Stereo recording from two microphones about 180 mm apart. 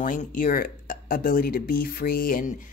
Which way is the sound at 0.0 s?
50° left (ahead or behind).